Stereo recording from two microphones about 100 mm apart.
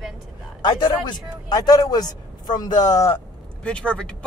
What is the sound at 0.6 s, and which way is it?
Speech, 45° left (ahead or behind).